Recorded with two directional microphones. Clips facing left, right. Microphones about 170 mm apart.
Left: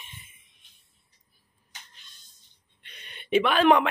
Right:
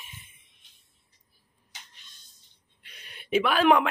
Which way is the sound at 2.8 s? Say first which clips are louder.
Left 2 dB; 5° right (ahead or behind).